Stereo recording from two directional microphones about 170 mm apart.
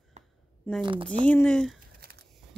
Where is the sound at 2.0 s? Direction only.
65° right (ahead or behind).